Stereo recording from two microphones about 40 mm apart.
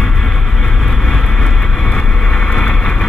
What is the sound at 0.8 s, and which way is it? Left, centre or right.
Vehicle, centre.